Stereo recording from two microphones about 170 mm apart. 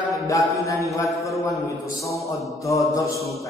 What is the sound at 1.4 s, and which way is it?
Speech, 20° left (ahead or behind).